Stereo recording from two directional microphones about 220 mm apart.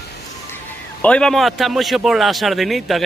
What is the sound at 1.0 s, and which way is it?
A man's voice, 5° left (ahead or behind).